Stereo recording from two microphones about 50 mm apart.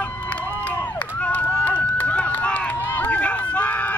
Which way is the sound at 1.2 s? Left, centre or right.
Left.